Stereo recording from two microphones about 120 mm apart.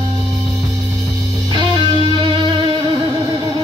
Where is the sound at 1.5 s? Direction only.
45° right (ahead or behind).